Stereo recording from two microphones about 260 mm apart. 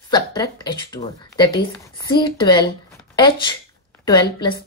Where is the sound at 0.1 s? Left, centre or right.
Centre.